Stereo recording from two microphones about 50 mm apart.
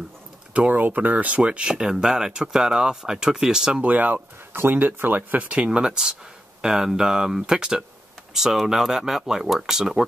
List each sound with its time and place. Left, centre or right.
0.5 s speech: right
1.4 s speech: centre
3.8 s speech: right
5.5 s speech: right